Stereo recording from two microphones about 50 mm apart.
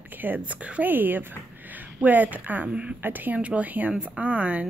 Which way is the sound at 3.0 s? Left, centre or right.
Right.